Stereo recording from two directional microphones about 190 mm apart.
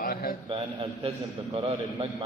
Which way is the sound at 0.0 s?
50° left (ahead or behind).